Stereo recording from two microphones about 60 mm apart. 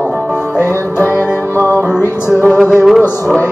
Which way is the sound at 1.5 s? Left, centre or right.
Left.